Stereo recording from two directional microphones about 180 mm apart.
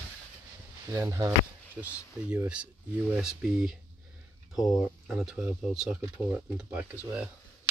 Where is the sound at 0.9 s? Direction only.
15° right (ahead or behind).